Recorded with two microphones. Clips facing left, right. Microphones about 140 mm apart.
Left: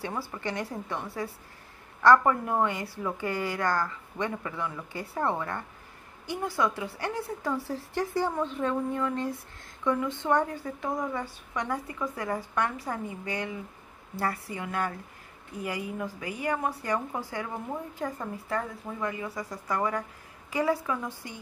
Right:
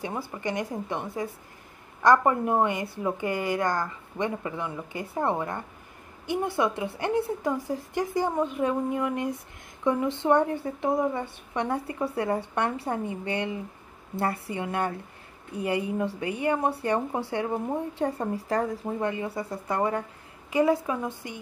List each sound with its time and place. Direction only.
0.3 s a woman's voice: 15° right (ahead or behind)